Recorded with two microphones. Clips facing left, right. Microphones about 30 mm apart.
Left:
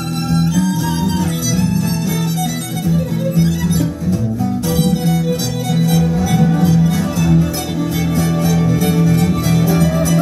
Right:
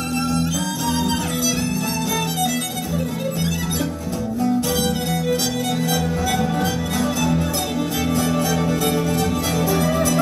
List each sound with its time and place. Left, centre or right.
6.3 s music: centre
6.6 s music: right
8.5 s music: right